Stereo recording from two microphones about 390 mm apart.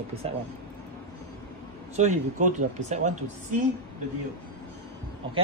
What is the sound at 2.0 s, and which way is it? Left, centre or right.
Speech, centre.